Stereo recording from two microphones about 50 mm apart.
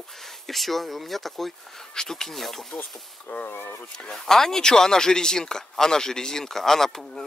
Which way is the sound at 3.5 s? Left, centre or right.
Left.